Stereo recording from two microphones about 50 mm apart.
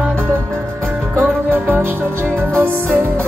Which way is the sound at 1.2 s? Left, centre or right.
Right.